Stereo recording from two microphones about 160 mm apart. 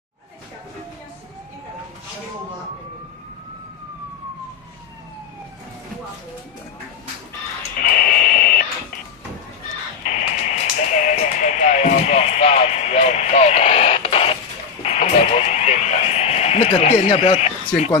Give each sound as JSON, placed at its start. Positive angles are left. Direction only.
{"t": 7.8, "sound": "radio", "side_deg": 65}
{"t": 10.0, "sound": "a sound", "side_deg": 50}
{"t": 14.8, "sound": "fire alarm", "side_deg": 40}
{"t": 17.1, "sound": "speech", "side_deg": 35}